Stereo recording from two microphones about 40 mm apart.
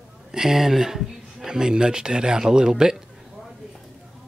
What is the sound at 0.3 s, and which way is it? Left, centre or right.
A man's voice, centre.